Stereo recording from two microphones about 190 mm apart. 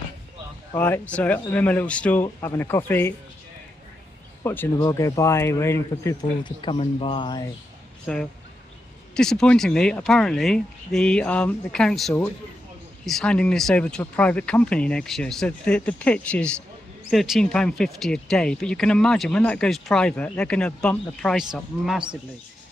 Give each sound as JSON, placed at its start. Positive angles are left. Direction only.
{"t": 0.7, "sound": "speech", "side_deg": 10}
{"t": 4.4, "sound": "speech", "side_deg": 15}
{"t": 8.1, "sound": "speech", "side_deg": 5}